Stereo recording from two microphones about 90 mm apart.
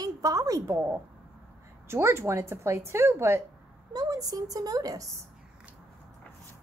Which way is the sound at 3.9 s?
45° right (ahead or behind).